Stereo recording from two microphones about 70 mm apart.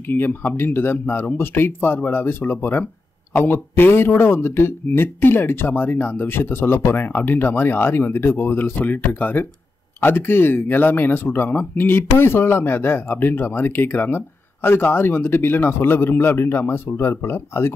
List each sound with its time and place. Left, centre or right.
0.1 s speech: left